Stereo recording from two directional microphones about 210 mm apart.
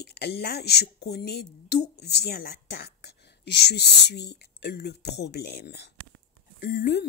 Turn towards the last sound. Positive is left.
turn(degrees=50)  # may be behind; listen again after turning